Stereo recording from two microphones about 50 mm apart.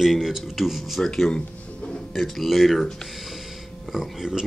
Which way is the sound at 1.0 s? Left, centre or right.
Centre.